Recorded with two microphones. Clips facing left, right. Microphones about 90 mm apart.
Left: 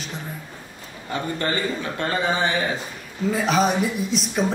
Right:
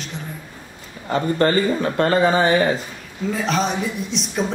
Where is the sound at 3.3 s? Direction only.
5° left (ahead or behind).